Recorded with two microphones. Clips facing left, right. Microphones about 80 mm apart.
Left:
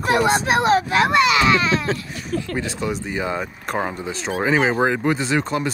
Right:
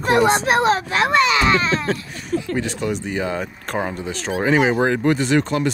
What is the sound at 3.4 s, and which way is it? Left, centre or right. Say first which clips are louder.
Speech: even; centre.